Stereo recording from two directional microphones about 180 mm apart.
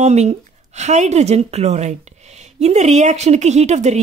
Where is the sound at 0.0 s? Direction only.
40° right (ahead or behind).